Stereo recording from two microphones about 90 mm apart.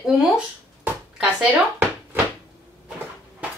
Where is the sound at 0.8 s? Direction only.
15° right (ahead or behind).